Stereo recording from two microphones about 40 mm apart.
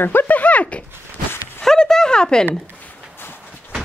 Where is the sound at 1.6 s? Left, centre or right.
Centre.